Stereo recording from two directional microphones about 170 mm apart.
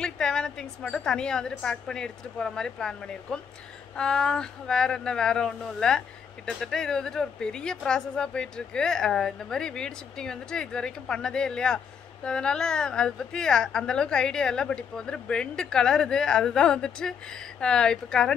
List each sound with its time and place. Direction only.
0.0 s speech: 5° left (ahead or behind)